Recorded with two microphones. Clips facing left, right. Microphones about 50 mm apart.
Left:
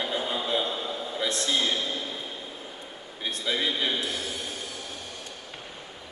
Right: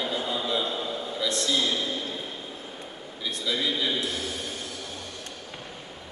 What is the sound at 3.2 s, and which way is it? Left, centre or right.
Speech, left.